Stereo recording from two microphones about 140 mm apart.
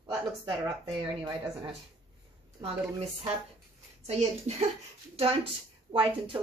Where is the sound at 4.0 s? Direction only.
50° right (ahead or behind).